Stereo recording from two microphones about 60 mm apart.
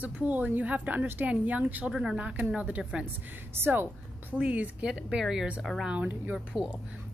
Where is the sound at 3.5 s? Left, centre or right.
Right.